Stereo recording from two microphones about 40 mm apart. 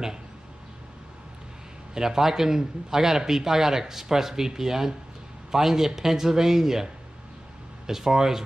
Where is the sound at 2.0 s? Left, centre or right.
Centre.